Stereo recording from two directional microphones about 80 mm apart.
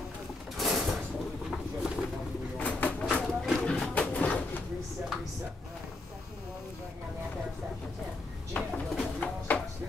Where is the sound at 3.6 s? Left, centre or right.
Centre.